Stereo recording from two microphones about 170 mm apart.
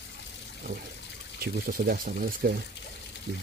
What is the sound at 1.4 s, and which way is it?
Speech, 55° right (ahead or behind).